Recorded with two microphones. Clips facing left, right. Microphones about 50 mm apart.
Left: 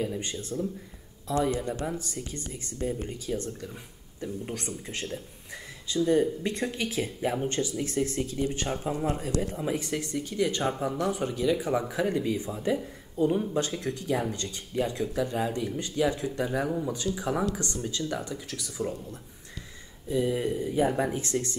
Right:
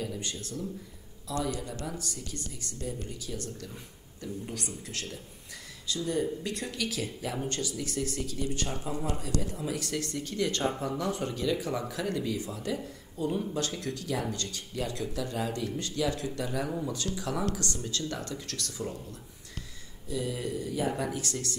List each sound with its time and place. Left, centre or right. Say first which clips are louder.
0.0 s speech: left 4 dB; left; by 18.9 s centre
20.1 s speech: left 6 dB; left